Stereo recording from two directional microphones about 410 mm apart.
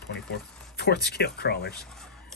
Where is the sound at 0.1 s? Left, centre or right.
Left.